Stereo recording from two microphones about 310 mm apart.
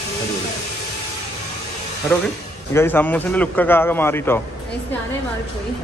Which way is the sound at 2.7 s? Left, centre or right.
Centre.